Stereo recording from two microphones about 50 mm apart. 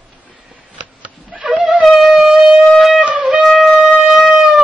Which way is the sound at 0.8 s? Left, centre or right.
Right.